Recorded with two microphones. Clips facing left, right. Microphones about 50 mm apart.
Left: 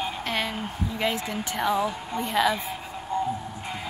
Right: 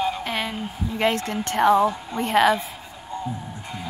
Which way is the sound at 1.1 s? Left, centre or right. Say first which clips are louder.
Right 5 dB; centre.